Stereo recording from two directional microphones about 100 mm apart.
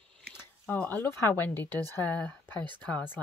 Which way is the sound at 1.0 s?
25° left (ahead or behind).